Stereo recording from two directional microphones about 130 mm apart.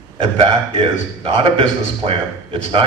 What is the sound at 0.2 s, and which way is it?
A man's voice, 45° right (ahead or behind).